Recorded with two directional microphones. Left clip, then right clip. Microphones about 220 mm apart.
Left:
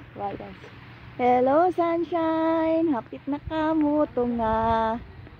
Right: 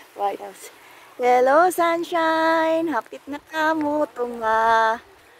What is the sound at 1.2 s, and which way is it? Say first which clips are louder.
Speech: right 4 dB; 5° right (ahead or behind).